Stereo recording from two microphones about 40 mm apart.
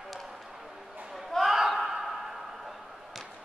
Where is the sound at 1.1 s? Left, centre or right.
Centre.